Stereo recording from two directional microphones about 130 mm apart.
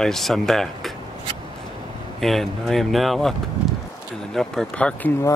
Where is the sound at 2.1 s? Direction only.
Centre (ahead or behind).